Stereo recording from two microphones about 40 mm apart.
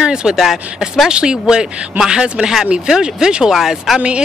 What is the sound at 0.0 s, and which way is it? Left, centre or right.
Speech, centre.